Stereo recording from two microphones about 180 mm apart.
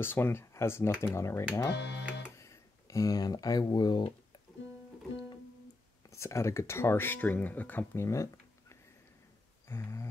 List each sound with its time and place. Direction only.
0.0 s speech: 10° left (ahead or behind)
1.7 s speech: 70° left (ahead or behind)
2.3 s speech: 15° left (ahead or behind)
6.0 s speech: 15° left (ahead or behind)
9.7 s a sound: 15° left (ahead or behind)